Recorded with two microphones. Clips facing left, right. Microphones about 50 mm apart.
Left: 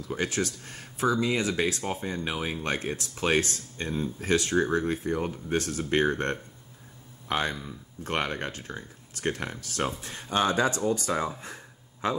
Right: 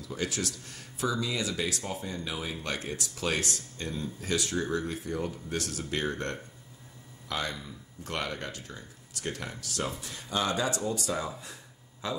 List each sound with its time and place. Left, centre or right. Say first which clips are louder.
0.0 s speech: left 4 dB; left